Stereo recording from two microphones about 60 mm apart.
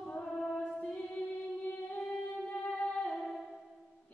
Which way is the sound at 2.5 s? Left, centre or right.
Left.